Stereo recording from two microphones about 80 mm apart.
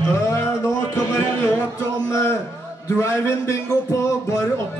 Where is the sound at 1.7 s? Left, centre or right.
Left.